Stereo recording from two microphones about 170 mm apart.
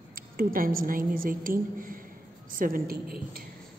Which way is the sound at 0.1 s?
55° right (ahead or behind).